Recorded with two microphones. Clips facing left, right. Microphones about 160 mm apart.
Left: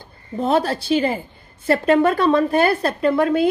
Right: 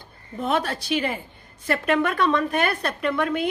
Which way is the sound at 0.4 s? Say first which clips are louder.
Left 6 dB; 30° left (ahead or behind).